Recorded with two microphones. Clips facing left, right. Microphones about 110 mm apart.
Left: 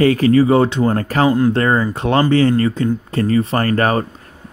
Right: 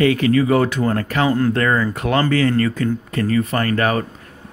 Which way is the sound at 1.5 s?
30° left (ahead or behind).